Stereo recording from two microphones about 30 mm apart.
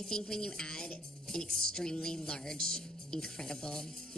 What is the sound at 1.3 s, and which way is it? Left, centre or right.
Speech, left.